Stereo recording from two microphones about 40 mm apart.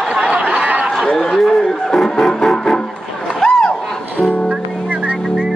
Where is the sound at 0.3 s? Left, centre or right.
Right.